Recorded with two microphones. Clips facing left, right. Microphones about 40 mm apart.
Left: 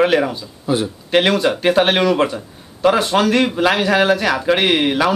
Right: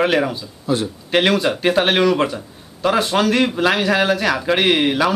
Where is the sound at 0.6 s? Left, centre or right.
Centre.